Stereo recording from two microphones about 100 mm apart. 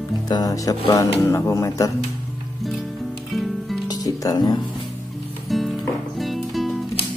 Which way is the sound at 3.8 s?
40° left (ahead or behind).